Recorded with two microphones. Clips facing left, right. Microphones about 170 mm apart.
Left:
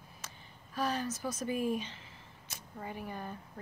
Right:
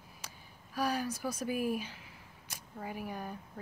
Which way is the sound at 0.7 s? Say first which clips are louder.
Right 1 dB; 10° right (ahead or behind).